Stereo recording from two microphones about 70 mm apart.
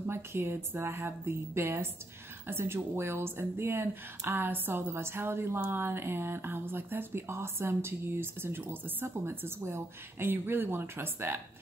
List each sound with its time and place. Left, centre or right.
0.0 s speech: right